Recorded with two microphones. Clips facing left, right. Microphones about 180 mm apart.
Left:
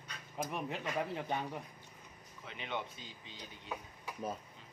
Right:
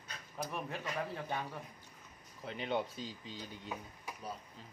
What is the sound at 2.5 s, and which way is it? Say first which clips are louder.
Speech: right 5 dB; 35° right (ahead or behind).